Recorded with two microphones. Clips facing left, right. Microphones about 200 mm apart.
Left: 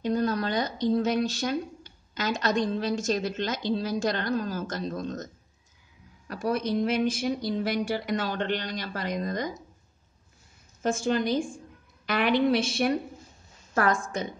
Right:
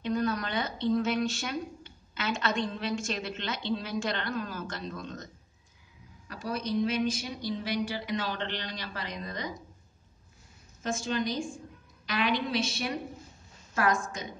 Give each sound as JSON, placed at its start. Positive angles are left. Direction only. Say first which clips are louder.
{"t": 0.0, "sound": "a woman's voice", "louder": "left 3 dB", "side_deg": 35}
{"t": 6.2, "sound": "speech", "louder": "left 6 dB", "side_deg": 50}
{"t": 10.8, "sound": "a woman's voice", "louder": "left 5 dB", "side_deg": 55}